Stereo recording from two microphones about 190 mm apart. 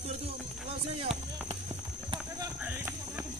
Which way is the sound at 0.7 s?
30° right (ahead or behind).